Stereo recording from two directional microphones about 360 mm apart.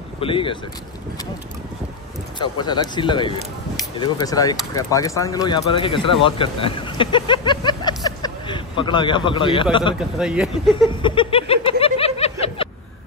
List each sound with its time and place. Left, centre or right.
0.2 s speech: centre
2.3 s speech: centre
9.9 s speech: centre
10.9 s a sound: centre